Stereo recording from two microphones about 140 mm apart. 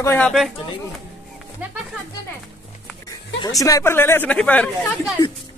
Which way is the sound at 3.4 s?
25° left (ahead or behind).